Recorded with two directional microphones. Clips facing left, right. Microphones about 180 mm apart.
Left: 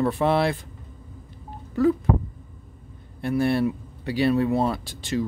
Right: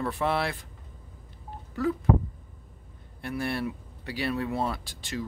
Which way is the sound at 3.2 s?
25° left (ahead or behind).